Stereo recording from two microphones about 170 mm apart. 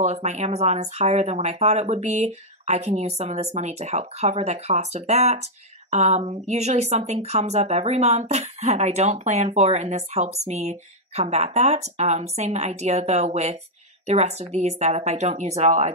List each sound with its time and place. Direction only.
0.0 s speech: 40° right (ahead or behind)